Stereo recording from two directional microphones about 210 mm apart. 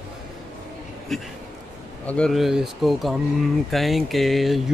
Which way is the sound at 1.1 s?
Centre (ahead or behind).